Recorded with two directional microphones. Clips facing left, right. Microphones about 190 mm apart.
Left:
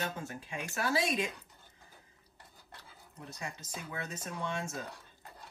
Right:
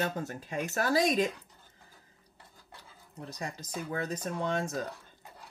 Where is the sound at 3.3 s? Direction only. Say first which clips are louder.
Right 5 dB; 40° right (ahead or behind).